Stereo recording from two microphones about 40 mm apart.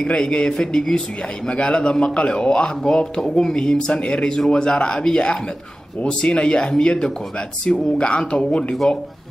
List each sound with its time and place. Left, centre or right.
0.0 s speech: left